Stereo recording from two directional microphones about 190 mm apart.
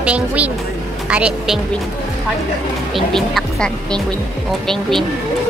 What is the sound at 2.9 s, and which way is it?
Speech, centre (ahead or behind).